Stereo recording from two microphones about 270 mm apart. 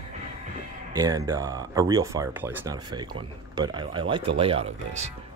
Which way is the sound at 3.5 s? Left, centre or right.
Centre.